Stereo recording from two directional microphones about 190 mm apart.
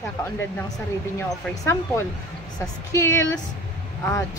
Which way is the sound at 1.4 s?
15° left (ahead or behind).